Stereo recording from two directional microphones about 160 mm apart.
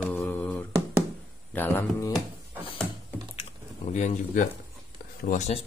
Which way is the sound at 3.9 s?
45° left (ahead or behind).